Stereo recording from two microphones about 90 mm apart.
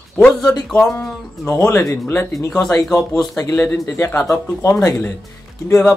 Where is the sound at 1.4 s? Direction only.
35° left (ahead or behind).